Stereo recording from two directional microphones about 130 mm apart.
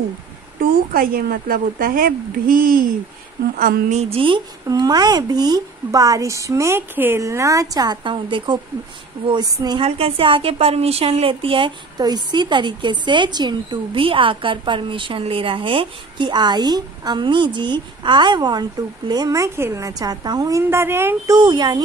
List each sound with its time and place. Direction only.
0.6 s speech: 90° right
3.5 s a woman's voice: 60° right (ahead or behind)
4.6 s a woman's voice: 30° right (ahead or behind)
9.8 s a woman's voice: 45° right (ahead or behind); by 21.4 s 20° right (ahead or behind)
21.4 s a woman's voice: 35° right (ahead or behind)